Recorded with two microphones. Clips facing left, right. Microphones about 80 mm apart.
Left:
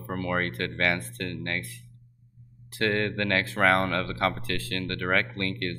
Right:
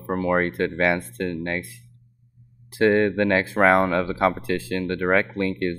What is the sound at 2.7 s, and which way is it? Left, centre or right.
Speech, centre.